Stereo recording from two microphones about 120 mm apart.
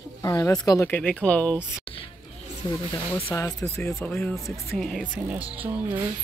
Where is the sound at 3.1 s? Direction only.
25° left (ahead or behind).